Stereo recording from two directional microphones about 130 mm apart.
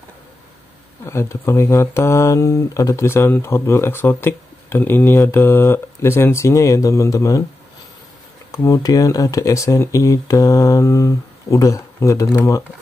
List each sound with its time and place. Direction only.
1.0 s speech: 20° left (ahead or behind)
8.5 s speech: 25° left (ahead or behind)